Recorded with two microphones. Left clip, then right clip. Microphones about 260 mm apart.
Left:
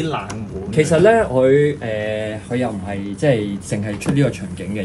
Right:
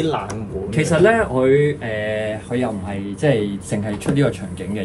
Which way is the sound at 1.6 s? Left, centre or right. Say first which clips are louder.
Left 1 dB; right.